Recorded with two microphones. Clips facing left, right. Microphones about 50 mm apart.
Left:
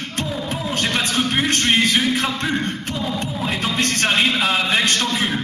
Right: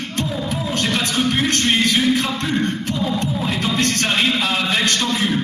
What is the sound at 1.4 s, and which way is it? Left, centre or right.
Speech, centre.